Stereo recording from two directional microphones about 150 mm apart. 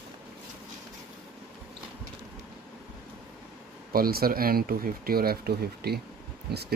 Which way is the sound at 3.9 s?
85° right.